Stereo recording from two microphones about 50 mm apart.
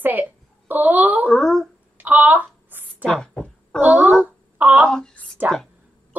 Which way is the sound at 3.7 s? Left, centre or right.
Left.